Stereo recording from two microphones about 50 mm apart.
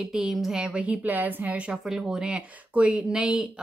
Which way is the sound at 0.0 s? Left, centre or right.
Centre.